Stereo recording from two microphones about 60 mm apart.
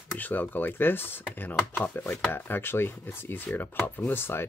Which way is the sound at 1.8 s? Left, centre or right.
Left.